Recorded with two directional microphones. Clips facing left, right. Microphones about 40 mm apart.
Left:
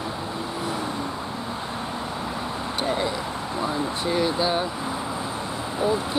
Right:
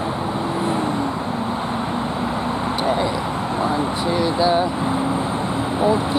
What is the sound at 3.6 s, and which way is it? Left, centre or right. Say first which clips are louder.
Speech: right 5 dB; right.